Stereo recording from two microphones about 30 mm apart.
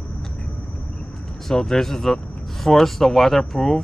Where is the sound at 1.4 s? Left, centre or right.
Centre.